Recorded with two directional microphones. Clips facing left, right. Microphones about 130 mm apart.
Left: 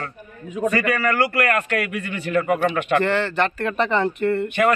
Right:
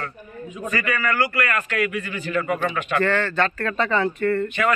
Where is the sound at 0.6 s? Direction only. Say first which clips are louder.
Left 5 dB; 60° left (ahead or behind).